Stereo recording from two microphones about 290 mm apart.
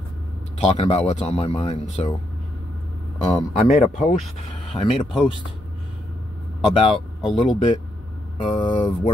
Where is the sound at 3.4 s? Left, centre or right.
Left.